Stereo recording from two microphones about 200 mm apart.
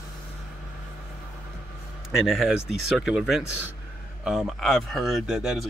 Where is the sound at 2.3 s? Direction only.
Centre (ahead or behind).